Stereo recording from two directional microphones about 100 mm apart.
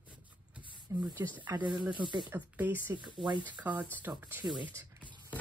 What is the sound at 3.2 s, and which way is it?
Speech, 50° right (ahead or behind).